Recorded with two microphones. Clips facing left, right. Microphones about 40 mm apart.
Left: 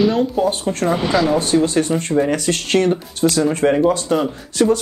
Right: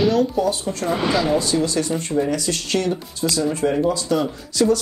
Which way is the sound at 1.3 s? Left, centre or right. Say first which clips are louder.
Left 4 dB; left.